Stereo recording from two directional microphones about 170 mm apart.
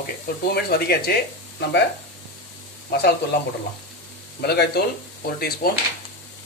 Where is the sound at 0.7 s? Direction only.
70° left (ahead or behind).